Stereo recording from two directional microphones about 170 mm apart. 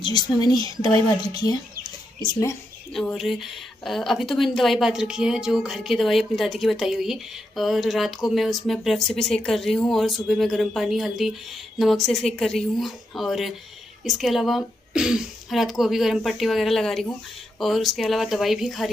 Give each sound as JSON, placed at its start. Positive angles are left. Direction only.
{"t": 0.0, "sound": "a woman's voice", "side_deg": 25}
{"t": 2.9, "sound": "a woman's voice", "side_deg": 0}